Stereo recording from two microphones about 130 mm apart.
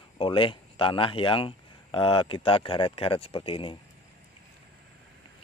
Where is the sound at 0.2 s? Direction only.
40° left (ahead or behind).